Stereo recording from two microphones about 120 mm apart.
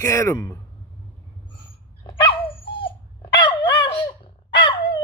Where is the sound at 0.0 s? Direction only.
25° left (ahead or behind).